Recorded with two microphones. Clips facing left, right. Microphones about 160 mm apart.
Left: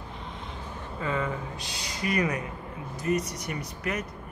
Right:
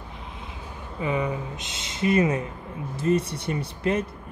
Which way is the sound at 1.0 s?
15° right (ahead or behind).